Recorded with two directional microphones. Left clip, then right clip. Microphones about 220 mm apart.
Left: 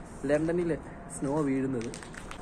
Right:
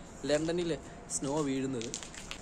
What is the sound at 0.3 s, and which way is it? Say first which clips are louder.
A man's voice: left 3 dB; 15° right (ahead or behind).